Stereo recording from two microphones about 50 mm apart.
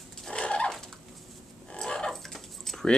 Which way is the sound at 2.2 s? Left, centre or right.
Centre.